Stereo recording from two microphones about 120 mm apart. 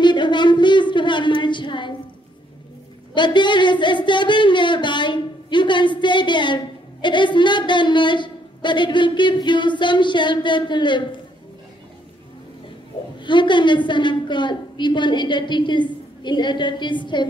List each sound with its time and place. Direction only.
0.0 s a sound: 40° left (ahead or behind)
3.2 s speech: 40° left (ahead or behind)
13.2 s speech: 40° left (ahead or behind)